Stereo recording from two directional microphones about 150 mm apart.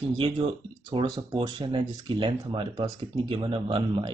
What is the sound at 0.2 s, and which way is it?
Speech, 35° right (ahead or behind).